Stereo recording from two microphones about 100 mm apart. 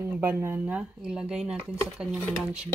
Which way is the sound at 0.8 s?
5° right (ahead or behind).